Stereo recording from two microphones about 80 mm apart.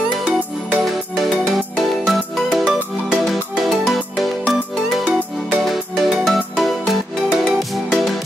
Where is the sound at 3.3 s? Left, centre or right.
Centre.